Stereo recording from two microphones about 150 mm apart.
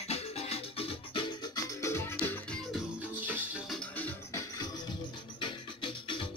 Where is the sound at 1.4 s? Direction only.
25° left (ahead or behind).